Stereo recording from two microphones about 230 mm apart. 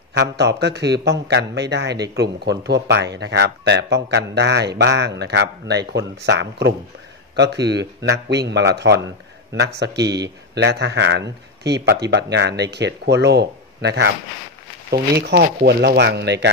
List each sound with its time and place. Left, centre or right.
0.1 s speech: right